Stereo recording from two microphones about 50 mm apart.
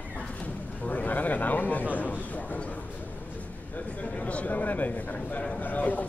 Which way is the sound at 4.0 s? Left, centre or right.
Left.